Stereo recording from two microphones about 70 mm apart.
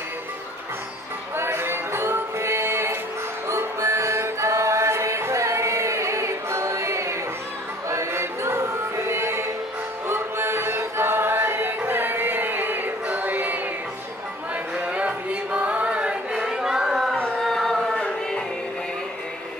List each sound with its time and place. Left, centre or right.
1.3 s music: right
7.9 s chant: right
10.0 s music: right
14.9 s music: centre
16.3 s a sound: centre